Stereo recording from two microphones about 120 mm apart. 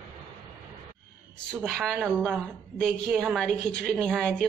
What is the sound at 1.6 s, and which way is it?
A woman's voice, 5° left (ahead or behind).